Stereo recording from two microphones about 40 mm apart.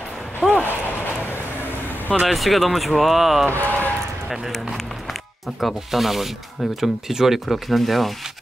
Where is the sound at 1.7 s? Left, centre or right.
Left.